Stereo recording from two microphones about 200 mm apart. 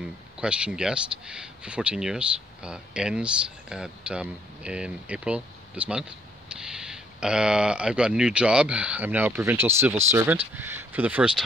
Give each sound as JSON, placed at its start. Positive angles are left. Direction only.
{"t": 0.4, "sound": "speech", "side_deg": -5}